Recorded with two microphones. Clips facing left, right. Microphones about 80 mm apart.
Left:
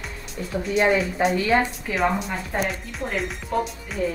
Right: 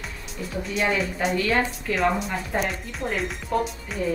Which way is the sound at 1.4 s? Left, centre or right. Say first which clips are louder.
Left 2 dB; centre.